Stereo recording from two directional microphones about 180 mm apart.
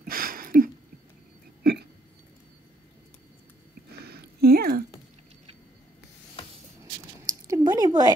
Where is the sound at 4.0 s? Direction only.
60° right (ahead or behind).